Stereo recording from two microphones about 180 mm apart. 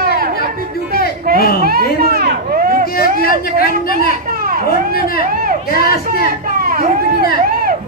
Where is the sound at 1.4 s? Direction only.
55° left (ahead or behind).